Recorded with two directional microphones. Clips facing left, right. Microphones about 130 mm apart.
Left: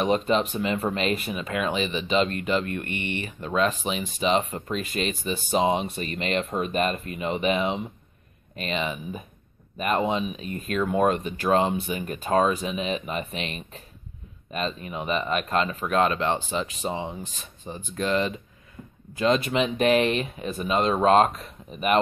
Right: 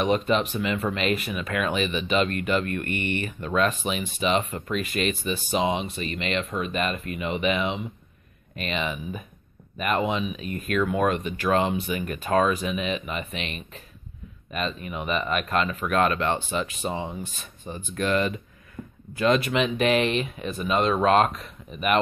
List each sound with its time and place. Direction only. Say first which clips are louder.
0.0 s speech: even; 30° left (ahead or behind)
5.5 s speech: left 3 dB; 40° left (ahead or behind); by 18.3 s 25° left (ahead or behind)
18.8 s a sound: right 5 dB; 90° right
19.1 s speech: even; 30° left (ahead or behind)